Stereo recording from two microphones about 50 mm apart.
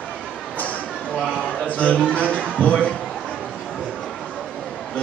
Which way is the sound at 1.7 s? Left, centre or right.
Left.